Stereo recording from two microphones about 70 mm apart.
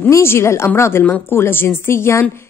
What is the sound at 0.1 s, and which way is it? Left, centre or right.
Speech, left.